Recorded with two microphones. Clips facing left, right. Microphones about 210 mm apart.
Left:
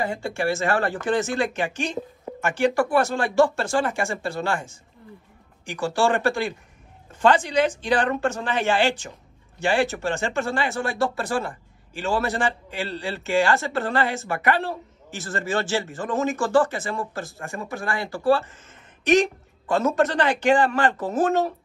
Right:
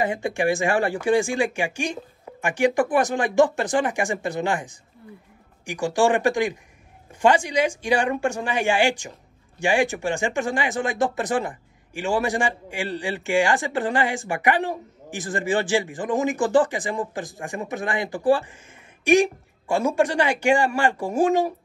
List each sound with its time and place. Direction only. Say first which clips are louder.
0.0 s speech: right 3 dB; 15° right (ahead or behind)